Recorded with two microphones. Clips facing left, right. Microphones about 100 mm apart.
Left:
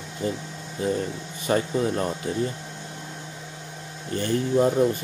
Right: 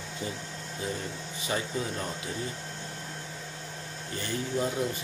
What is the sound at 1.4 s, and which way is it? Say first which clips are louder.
Speech: left 9 dB; 50° left (ahead or behind).